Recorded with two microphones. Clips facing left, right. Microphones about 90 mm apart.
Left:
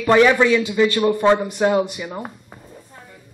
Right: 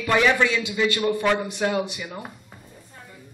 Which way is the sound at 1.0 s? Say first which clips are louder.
Left 6 dB; 25° left (ahead or behind).